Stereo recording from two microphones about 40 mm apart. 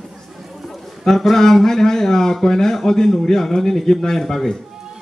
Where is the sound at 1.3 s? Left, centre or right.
Centre.